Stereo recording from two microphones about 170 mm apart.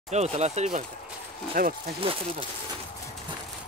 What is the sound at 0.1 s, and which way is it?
Speech, 40° right (ahead or behind).